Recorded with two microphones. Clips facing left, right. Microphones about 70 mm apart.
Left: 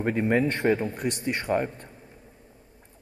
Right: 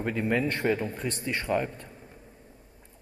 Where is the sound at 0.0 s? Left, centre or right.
Left.